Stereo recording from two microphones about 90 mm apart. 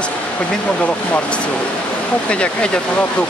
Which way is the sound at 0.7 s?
10° left (ahead or behind).